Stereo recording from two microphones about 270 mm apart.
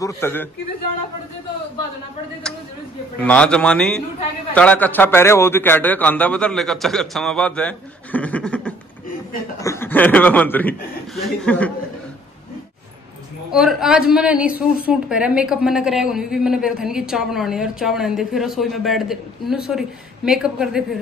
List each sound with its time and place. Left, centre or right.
0.0 s a man's voice: centre
3.2 s a woman's voice: centre
13.5 s a woman's voice: centre